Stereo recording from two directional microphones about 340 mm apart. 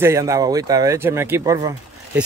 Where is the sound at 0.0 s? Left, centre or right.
Centre.